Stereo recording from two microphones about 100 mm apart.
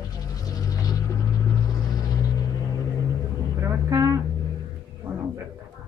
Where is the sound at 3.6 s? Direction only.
30° right (ahead or behind).